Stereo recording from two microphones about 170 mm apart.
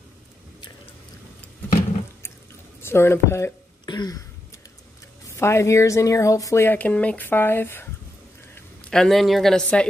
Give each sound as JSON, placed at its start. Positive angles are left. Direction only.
{"t": 2.8, "sound": "speech", "side_deg": 15}
{"t": 5.3, "sound": "speech", "side_deg": 15}
{"t": 8.9, "sound": "speech", "side_deg": 0}